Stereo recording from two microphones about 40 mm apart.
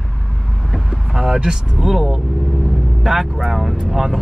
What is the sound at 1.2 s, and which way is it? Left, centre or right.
Speech, centre.